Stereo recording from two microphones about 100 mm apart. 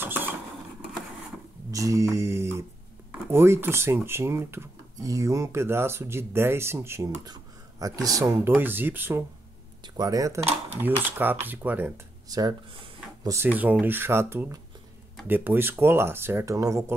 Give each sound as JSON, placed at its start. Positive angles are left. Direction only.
{"t": 0.0, "sound": "mechanisms", "side_deg": -20}
{"t": 1.7, "sound": "a sound", "side_deg": -35}
{"t": 3.1, "sound": "speech", "side_deg": -25}
{"t": 7.8, "sound": "speech", "side_deg": -35}
{"t": 8.5, "sound": "speech", "side_deg": -20}
{"t": 9.9, "sound": "speech", "side_deg": -35}
{"t": 10.8, "sound": "speech", "side_deg": -20}
{"t": 12.3, "sound": "speech", "side_deg": -45}
{"t": 13.4, "sound": "speech", "side_deg": -20}